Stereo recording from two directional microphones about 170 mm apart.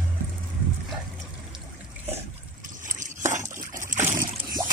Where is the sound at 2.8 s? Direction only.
50° right (ahead or behind).